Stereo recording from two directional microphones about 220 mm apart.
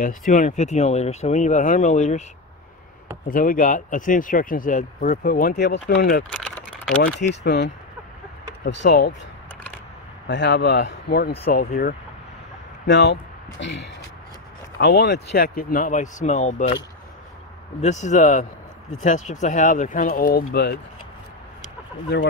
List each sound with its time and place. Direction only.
0.0 s speech: 35° left (ahead or behind)
3.3 s speech: 40° left (ahead or behind)
6.3 s typing: 5° left (ahead or behind)
7.4 s speech: 50° left (ahead or behind)
10.2 s speech: 55° left (ahead or behind)
14.8 s speech: 50° left (ahead or behind); by 16.7 s 30° left (ahead or behind)
17.7 s speech: 30° left (ahead or behind)